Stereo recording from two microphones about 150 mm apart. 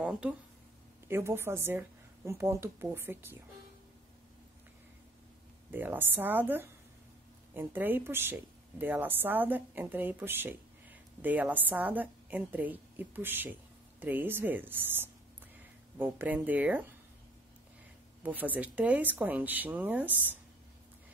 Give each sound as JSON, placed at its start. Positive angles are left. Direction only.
{"t": 0.0, "sound": "a woman's voice", "side_deg": -5}
{"t": 5.7, "sound": "a woman's voice", "side_deg": -15}
{"t": 18.2, "sound": "a woman's voice", "side_deg": -10}